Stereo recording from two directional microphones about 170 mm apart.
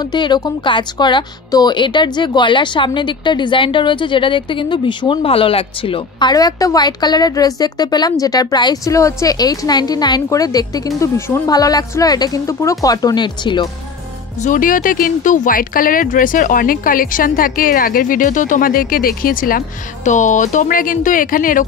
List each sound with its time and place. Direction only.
0.0 s a woman's voice: 25° left (ahead or behind)
14.4 s speech: 50° left (ahead or behind)
20.1 s speech: 45° left (ahead or behind)